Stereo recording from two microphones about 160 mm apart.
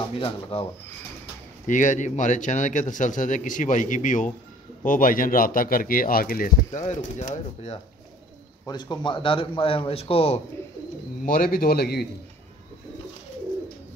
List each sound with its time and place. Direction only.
0.2 s a man's voice: 35° left (ahead or behind)
1.7 s a man's voice: 50° left (ahead or behind)
8.6 s a man's voice: 25° left (ahead or behind)
11.2 s a man's voice: 65° left (ahead or behind); by 12.1 s 85° left